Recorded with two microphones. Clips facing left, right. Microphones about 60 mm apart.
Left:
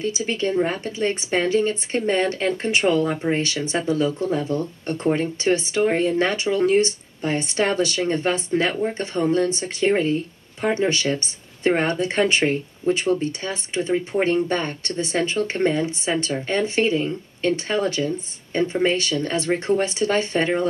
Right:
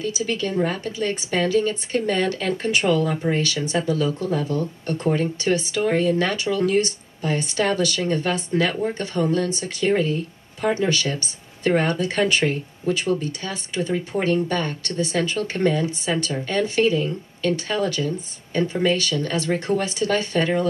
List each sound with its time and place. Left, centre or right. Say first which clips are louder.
0.0 s speech: left 1 dB; left